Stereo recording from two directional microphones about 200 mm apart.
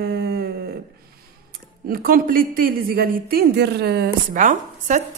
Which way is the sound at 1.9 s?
45° right (ahead or behind).